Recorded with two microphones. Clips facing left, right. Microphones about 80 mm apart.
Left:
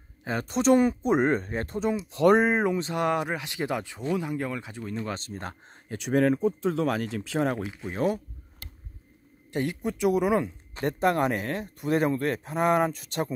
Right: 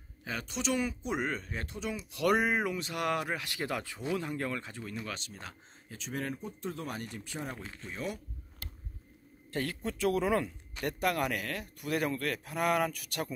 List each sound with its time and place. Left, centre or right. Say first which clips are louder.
0.2 s speech: left 10 dB; left; by 4.9 s centre
5.0 s speech: left 8 dB; left
7.9 s speech: left 11 dB; left
9.5 s speech: left 6 dB; centre
10.7 s speech: left 7 dB; left